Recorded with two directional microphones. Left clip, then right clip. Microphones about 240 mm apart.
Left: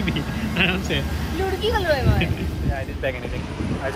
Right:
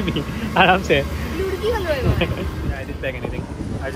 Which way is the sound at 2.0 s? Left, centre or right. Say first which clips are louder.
Right 2 dB; centre.